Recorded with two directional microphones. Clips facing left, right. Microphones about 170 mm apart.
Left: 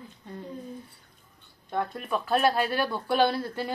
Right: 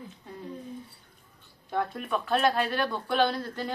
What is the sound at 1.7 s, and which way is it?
Speech, centre (ahead or behind).